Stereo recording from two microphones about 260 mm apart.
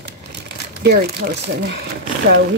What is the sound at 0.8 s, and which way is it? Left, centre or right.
Speech, right.